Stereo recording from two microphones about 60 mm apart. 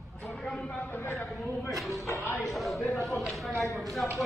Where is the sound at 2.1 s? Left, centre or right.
Left.